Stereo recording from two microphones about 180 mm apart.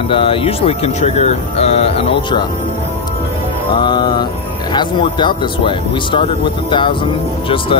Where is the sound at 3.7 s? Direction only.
25° left (ahead or behind).